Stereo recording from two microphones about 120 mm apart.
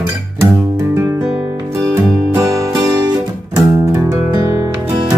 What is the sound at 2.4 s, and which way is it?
Music, 30° right (ahead or behind).